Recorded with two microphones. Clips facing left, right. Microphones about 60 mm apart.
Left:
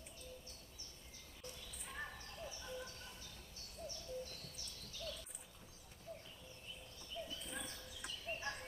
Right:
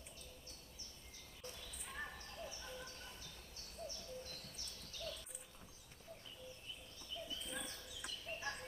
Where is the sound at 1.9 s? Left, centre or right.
Centre.